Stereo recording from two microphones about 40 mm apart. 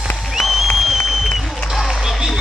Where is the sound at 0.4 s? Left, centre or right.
Centre.